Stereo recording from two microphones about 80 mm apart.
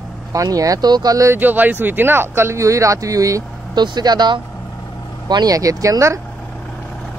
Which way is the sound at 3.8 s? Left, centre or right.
Right.